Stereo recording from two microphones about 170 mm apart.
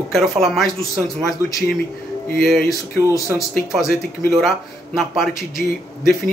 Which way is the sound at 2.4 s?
Centre (ahead or behind).